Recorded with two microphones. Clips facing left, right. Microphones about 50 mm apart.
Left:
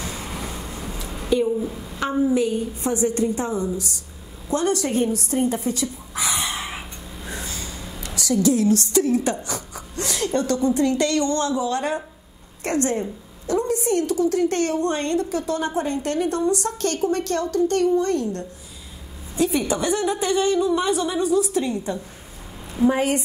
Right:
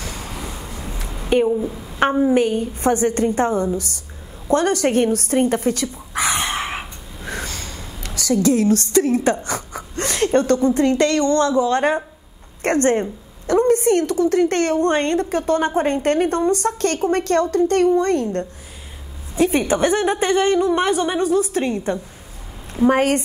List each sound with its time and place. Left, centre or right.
0.1 s vehicle: centre
0.4 s vehicle: centre
1.6 s a woman's voice: centre
2.3 s a woman's voice: right
6.2 s a sound: right
8.2 s a woman's voice: right